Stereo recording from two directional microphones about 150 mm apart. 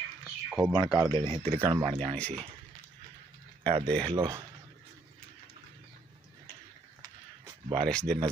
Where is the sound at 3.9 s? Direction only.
30° right (ahead or behind).